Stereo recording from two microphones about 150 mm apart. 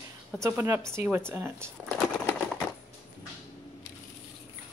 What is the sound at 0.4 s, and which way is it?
Speech, 15° right (ahead or behind).